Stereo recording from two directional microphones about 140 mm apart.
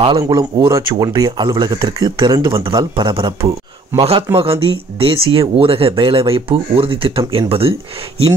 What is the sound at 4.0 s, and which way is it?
Speech, 45° right (ahead or behind).